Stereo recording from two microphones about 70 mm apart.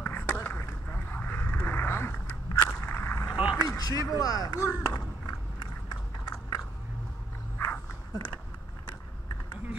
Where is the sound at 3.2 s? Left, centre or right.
Centre.